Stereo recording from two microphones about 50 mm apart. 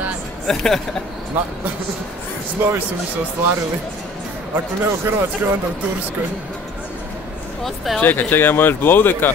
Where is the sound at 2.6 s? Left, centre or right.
Right.